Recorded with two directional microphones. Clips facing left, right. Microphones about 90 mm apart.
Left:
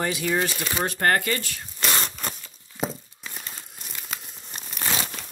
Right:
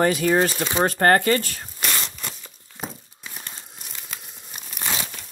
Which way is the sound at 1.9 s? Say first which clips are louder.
Left 2 dB; 40° left (ahead or behind).